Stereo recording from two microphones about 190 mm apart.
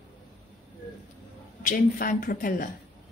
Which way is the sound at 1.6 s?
45° left (ahead or behind).